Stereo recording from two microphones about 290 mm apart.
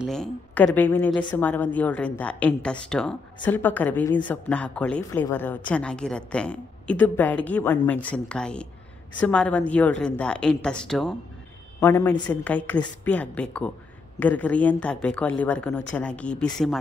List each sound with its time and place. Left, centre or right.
0.0 s a woman's voice: centre